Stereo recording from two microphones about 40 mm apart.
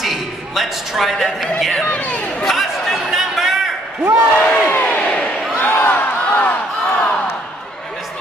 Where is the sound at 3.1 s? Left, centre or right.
Centre.